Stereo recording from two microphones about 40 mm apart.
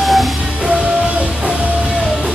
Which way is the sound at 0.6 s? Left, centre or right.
Right.